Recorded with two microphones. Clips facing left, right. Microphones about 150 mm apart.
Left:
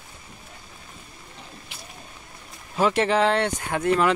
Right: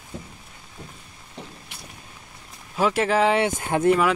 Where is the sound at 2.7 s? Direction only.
5° right (ahead or behind).